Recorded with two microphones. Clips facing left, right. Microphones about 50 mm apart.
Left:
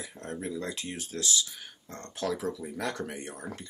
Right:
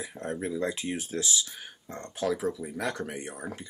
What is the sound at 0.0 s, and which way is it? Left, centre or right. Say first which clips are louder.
Speech: right 4 dB; centre.